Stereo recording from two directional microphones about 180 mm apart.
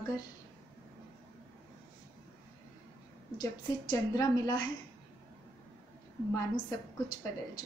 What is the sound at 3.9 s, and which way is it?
Speech, 20° left (ahead or behind).